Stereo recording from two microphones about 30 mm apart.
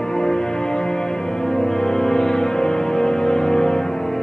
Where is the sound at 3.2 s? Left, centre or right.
Centre.